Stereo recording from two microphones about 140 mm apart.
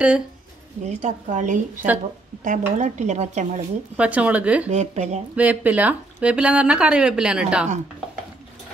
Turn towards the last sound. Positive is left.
turn(degrees=-5)  # may be behind; listen again after turning